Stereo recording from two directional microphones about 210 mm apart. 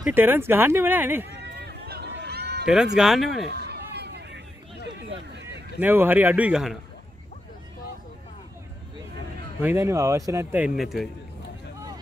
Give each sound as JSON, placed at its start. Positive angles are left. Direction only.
{"t": 0.0, "sound": "speech", "side_deg": -10}
{"t": 1.4, "sound": "run", "side_deg": -50}
{"t": 2.6, "sound": "speech", "side_deg": -5}
{"t": 3.4, "sound": "run", "side_deg": -50}
{"t": 5.8, "sound": "speech", "side_deg": -10}
{"t": 9.6, "sound": "speech", "side_deg": -10}